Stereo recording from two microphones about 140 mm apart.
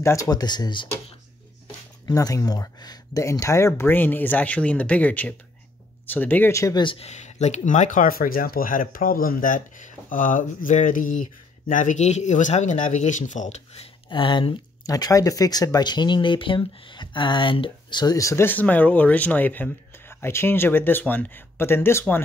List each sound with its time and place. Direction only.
0.0 s speech: 25° left (ahead or behind)
2.0 s speech: 25° left (ahead or behind)
6.8 s speech: 40° left (ahead or behind)
7.1 s speech: 55° left (ahead or behind); by 14.5 s 35° left (ahead or behind)
14.9 s speech: 25° left (ahead or behind)